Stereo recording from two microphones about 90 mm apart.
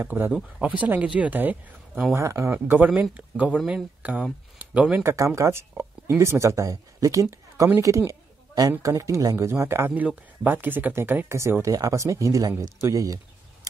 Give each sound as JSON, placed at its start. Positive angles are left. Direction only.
{"t": 0.0, "sound": "speech", "side_deg": -25}
{"t": 2.1, "sound": "speech", "side_deg": -30}
{"t": 5.0, "sound": "speech", "side_deg": -35}